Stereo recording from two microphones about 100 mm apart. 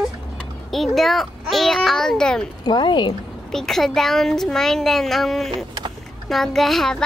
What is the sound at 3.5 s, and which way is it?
Child singing, 5° left (ahead or behind).